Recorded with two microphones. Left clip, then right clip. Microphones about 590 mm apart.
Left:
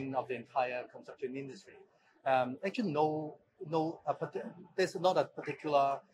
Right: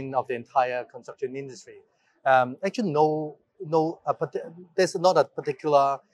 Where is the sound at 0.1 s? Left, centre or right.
Right.